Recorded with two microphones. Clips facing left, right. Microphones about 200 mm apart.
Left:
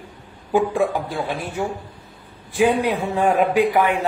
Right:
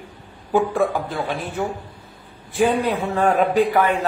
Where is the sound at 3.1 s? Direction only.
15° left (ahead or behind).